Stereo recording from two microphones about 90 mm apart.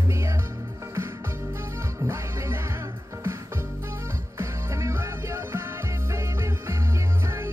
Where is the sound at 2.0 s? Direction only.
30° right (ahead or behind).